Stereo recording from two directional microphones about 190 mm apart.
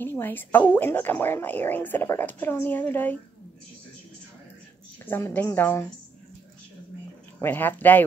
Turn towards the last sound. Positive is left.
turn(degrees=10)  # may be behind; listen again after turning